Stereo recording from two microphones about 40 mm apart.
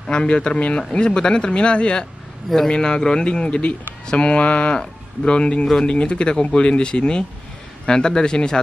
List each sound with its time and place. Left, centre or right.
0.1 s speech: left
4.7 s speech: left